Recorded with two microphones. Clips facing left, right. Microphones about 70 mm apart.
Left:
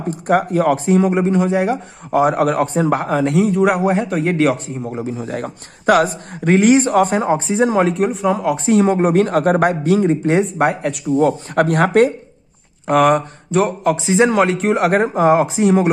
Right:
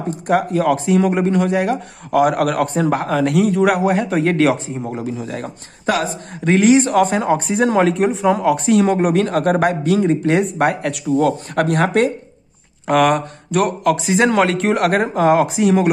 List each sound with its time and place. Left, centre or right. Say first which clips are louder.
0.3 s speech: left 1 dB; left
1.1 s a man's voice: left 1 dB; centre
3.3 s speech: even; right
3.5 s a man's voice: even; centre
5.1 s speech: left 2 dB; left
7.6 s speech: right 1 dB; centre
8.6 s speech: left 3 dB; left
10.0 s a man's voice: left 1 dB; left
10.7 s speech: even; right
11.1 s speech: left 2 dB; left
12.8 s speech: left 1 dB; centre
13.6 s a man's voice: even; left
14.3 s speech: even; centre
15.1 s a man's voice: left 1 dB; centre